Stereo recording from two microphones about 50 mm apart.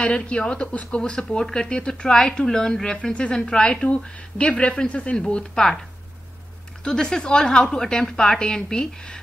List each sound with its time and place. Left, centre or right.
0.0 s speech: centre
5.2 s speech: centre
6.8 s speech: centre